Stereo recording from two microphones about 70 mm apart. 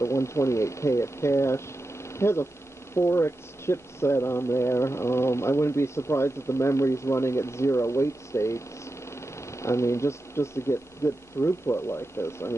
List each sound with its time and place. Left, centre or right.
0.0 s speech: left